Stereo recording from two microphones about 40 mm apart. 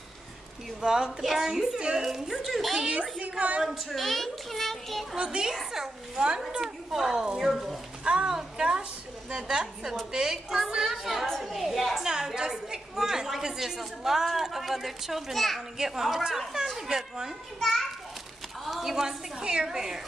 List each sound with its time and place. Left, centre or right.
0.7 s a woman's voice: centre
1.2 s a woman's voice: centre
2.9 s a woman's voice: right
3.9 s a child's voice: centre
5.1 s a woman's voice: right
7.5 s a woman's voice: centre
8.0 s a woman's voice: right
11.2 s a woman's voice: centre
12.4 s a woman's voice: centre
17.6 s a woman's voice: centre
18.7 s a sound: centre
18.9 s a woman's voice: centre